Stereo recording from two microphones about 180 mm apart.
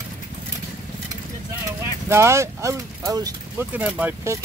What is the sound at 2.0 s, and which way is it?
Speech, 15° right (ahead or behind).